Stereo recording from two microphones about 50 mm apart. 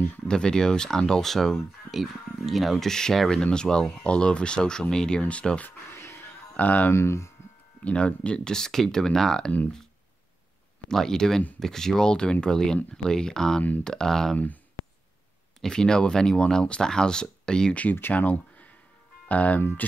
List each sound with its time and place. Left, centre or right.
0.3 s speech: centre
2.9 s speech: centre
5.9 s music: left
6.5 s speech: left
6.9 s speech: left
7.8 s speech: left; by 9.5 s centre
10.9 s speech: centre
15.6 s speech: centre
18.1 s speech: left